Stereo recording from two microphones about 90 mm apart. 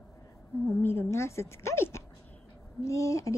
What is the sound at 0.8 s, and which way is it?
A woman's voice, 30° left (ahead or behind).